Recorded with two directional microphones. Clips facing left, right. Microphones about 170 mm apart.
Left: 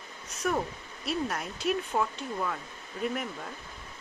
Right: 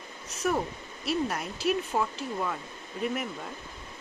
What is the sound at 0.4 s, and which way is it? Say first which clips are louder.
Speech: right 1 dB; 5° right (ahead or behind).